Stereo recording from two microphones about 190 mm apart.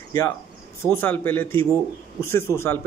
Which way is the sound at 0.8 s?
10° left (ahead or behind).